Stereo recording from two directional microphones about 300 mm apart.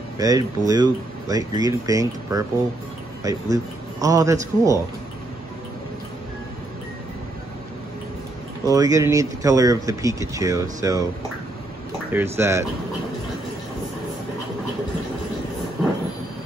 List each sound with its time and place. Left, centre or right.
0.2 s speech: centre
8.6 s speech: centre
12.1 s speech: centre